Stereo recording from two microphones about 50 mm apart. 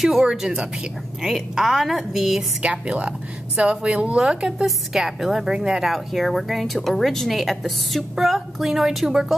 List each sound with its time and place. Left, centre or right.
0.0 s speech: centre
0.3 s a woman's voice: centre
2.6 s a woman's voice: right; by 5.9 s centre
5.9 s speech: centre